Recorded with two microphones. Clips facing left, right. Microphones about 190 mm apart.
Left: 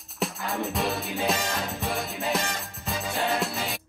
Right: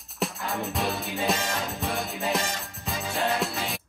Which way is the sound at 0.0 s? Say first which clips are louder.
Even; centre (ahead or behind).